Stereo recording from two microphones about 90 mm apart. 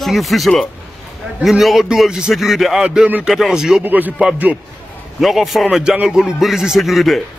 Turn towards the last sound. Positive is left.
turn(degrees=0)  # may be behind; listen again after turning